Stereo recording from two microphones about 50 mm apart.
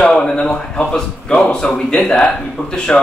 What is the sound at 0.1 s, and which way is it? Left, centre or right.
A man's voice, centre.